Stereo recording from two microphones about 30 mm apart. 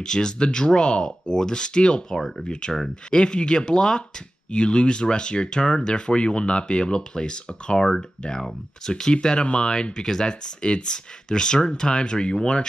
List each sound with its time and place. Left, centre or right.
0.0 s speech: left
2.0 s speech: centre
2.5 s speech: left
8.4 s speech: centre